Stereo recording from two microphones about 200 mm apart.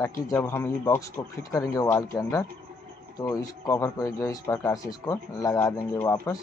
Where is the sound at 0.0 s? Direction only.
10° left (ahead or behind).